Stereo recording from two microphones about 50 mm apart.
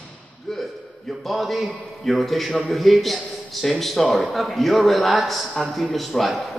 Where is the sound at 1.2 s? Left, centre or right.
Centre.